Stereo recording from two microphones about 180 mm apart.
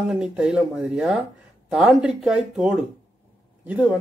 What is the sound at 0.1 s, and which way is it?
A man's voice, 5° right (ahead or behind).